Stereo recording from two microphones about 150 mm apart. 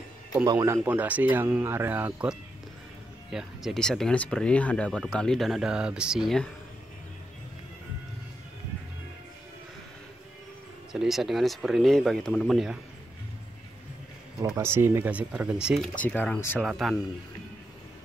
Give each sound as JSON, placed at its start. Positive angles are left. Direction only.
{"t": 0.5, "sound": "speech", "side_deg": -25}
{"t": 0.8, "sound": "speech", "side_deg": -10}
{"t": 10.9, "sound": "speech", "side_deg": -5}
{"t": 14.6, "sound": "speech", "side_deg": -15}
{"t": 16.0, "sound": "speech", "side_deg": 10}
{"t": 16.6, "sound": "speech", "side_deg": 0}